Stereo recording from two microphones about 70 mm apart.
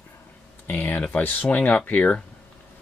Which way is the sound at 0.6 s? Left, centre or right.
Left.